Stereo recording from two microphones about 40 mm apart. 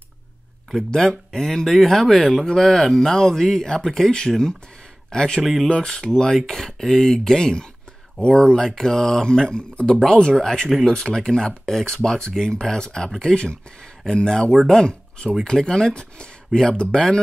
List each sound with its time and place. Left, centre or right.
0.9 s speech: centre
5.4 s speech: centre
5.7 s speech: centre
9.6 s speech: left; by 14.9 s centre
14.9 s speech: left